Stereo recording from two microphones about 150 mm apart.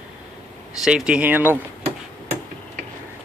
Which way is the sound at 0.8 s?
5° right (ahead or behind).